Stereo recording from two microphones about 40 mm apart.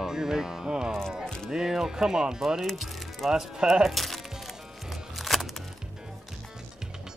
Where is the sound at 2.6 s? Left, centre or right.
Centre.